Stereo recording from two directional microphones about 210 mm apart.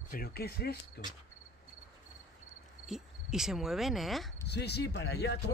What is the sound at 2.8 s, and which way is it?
Cricket, centre (ahead or behind).